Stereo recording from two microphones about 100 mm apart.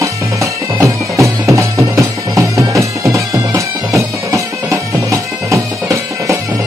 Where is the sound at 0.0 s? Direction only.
30° right (ahead or behind).